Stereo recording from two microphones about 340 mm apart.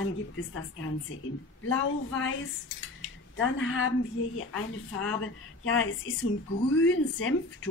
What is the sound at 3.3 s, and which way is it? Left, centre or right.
Speech, left.